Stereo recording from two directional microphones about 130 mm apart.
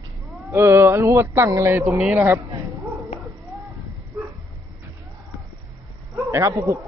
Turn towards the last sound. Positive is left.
turn(degrees=-25)  # may be behind; listen again after turning